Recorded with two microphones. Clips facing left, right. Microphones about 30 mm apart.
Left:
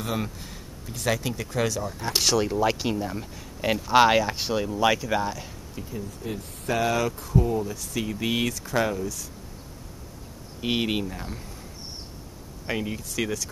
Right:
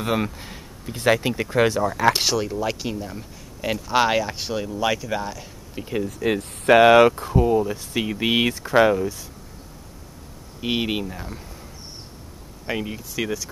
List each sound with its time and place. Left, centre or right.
0.0 s speech: right
2.4 s speech: centre
6.0 s speech: right
6.8 s speech: right
7.3 s speech: right
10.6 s speech: centre
12.6 s speech: centre